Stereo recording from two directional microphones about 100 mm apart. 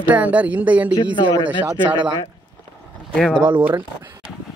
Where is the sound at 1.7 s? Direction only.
50° right (ahead or behind).